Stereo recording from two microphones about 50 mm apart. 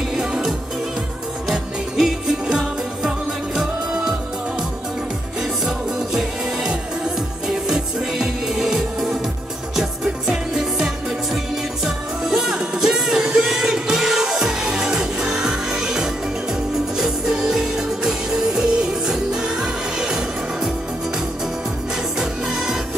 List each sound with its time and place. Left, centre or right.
0.1 s music: centre
5.4 s music: centre
22.2 s music: centre